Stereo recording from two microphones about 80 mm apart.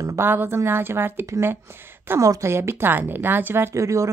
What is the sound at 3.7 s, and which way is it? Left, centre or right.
Speech, right.